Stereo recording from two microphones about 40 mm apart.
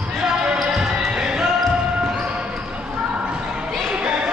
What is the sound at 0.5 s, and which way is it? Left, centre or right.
Basketball bounce, centre.